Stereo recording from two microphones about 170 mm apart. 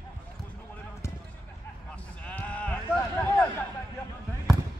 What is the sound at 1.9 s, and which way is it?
Sheep, 10° left (ahead or behind).